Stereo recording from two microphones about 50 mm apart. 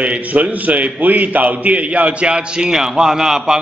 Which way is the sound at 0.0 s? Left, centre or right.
Right.